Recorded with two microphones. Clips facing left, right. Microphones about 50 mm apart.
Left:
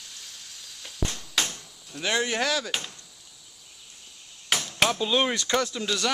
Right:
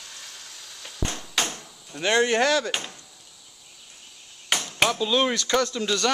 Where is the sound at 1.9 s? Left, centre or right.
Centre.